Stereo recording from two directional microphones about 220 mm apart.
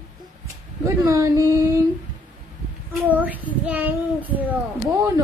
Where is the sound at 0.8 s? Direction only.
15° right (ahead or behind).